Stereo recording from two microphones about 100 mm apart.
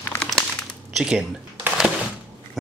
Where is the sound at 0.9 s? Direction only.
10° right (ahead or behind).